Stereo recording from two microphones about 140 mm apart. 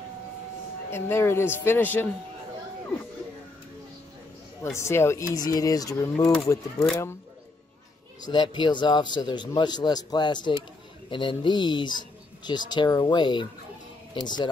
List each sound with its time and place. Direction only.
0.8 s speech: 15° left (ahead or behind)
4.7 s speech: 20° left (ahead or behind)
8.2 s speech: 30° left (ahead or behind)